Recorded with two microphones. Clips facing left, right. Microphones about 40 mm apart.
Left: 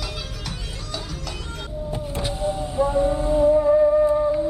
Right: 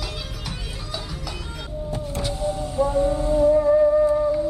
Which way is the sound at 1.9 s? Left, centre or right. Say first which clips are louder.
Even; left.